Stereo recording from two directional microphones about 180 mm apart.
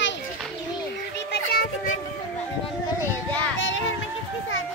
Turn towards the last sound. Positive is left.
turn(degrees=90)